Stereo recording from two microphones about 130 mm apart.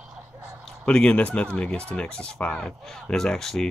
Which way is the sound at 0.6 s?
5° left (ahead or behind).